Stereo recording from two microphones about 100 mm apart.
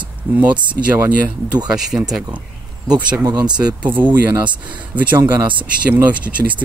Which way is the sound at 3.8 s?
15° right (ahead or behind).